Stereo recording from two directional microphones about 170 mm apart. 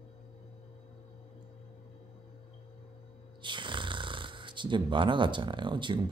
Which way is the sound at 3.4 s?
30° right (ahead or behind).